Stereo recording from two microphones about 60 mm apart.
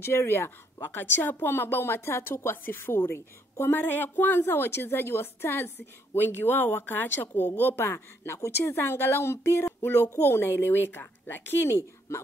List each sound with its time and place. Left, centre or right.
0.0 s speech: left